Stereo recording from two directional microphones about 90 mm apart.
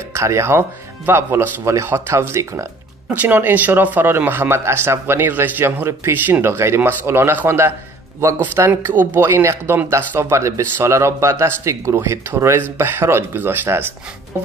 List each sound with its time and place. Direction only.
0.1 s speech: 30° right (ahead or behind)
3.2 s speech: 20° right (ahead or behind)